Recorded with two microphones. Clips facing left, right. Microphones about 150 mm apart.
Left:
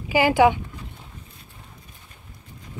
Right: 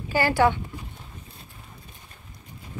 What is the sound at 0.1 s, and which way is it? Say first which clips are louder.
Speech: left 4 dB; 15° left (ahead or behind).